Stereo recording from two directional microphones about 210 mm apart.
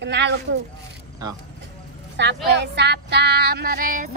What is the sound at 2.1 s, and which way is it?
Female singing, 55° right (ahead or behind).